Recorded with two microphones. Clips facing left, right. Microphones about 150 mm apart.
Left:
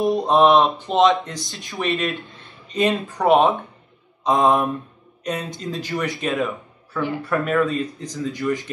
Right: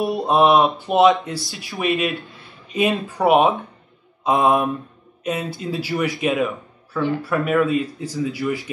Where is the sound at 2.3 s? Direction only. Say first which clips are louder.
Even; 10° right (ahead or behind).